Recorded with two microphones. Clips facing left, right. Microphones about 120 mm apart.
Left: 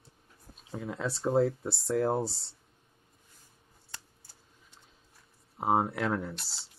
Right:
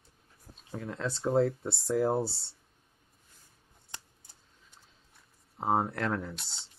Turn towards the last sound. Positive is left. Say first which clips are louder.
# left 2 dB
turn(degrees=0)  # may be behind; listen again after turning